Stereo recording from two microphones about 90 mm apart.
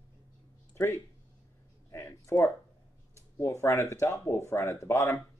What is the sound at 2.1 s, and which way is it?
Speech, 30° left (ahead or behind).